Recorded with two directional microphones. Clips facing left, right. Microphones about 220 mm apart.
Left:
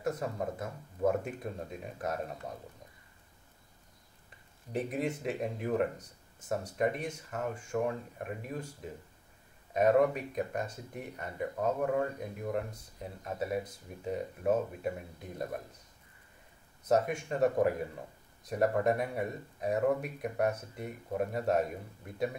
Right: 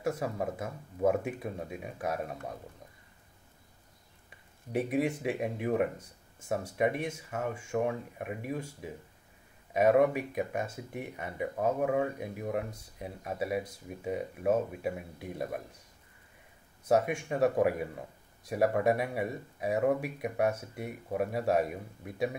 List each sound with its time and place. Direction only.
0.0 s speech: 10° right (ahead or behind)
4.7 s speech: 5° right (ahead or behind)
7.2 s speech: 10° right (ahead or behind)
9.8 s speech: 10° right (ahead or behind)
16.9 s speech: 10° right (ahead or behind)